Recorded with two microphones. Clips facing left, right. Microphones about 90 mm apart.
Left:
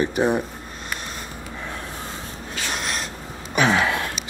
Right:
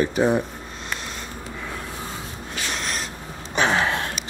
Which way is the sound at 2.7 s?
5° left (ahead or behind).